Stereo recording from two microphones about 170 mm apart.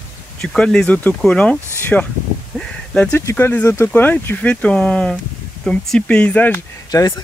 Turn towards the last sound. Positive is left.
turn(degrees=20)  # may be behind; listen again after turning